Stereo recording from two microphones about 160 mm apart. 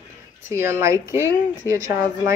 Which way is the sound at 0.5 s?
15° right (ahead or behind).